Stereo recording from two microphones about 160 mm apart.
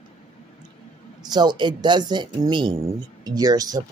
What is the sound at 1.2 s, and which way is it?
Speech, 25° right (ahead or behind).